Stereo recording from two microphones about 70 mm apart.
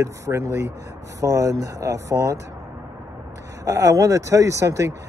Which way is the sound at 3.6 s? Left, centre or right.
Right.